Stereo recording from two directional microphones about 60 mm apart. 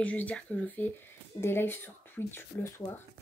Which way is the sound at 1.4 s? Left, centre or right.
Left.